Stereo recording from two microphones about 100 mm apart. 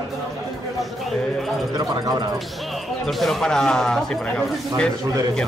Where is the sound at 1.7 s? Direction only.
40° right (ahead or behind).